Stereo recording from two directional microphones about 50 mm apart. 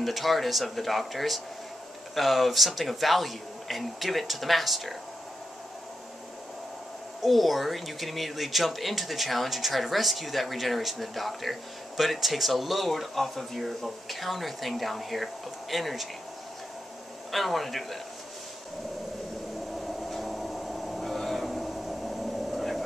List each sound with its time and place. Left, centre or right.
0.0 s speech: centre
7.2 s speech: centre
17.3 s speech: centre
19.7 s a sound: centre